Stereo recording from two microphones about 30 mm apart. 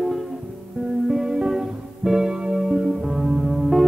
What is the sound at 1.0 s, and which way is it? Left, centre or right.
Music, centre.